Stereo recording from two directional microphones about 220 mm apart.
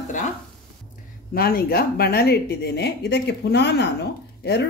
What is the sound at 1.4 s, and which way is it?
Speech, 45° left (ahead or behind).